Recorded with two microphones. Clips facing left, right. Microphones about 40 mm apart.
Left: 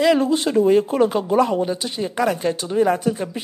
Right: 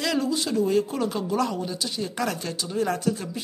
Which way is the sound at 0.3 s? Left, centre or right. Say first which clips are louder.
Left 7 dB; left.